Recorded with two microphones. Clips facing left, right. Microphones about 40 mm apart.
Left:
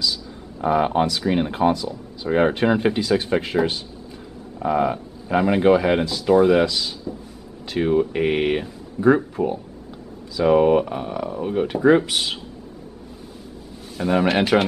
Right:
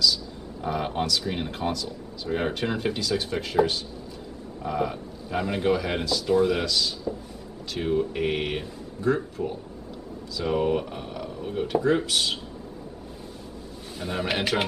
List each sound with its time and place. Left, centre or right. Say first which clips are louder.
0.0 s speech: right 1 dB; left
13.9 s speech: left 9 dB; centre